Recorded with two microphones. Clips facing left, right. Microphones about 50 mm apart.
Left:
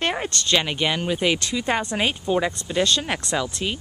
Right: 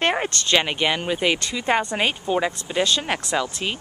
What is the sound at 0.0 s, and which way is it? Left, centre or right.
Speech, centre.